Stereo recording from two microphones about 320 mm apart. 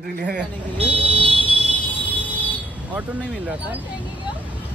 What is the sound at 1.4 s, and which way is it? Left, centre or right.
Vehicle, centre.